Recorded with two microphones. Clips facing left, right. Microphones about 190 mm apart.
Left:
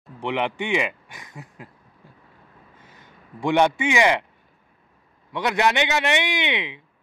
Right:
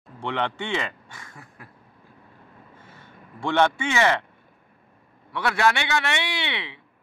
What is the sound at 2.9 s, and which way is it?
A man's voice, 15° left (ahead or behind).